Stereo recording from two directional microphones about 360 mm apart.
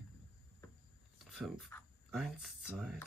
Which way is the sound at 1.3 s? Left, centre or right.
Centre.